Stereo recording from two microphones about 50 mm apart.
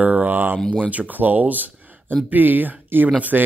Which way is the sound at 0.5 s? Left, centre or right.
Centre.